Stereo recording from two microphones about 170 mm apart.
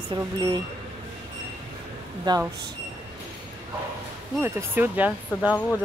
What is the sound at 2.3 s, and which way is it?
Speech, 25° right (ahead or behind).